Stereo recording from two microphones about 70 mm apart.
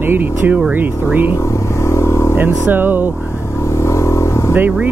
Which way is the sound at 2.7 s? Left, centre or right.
Right.